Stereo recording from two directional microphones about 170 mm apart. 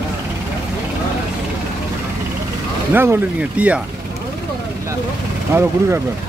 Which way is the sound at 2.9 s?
10° right (ahead or behind).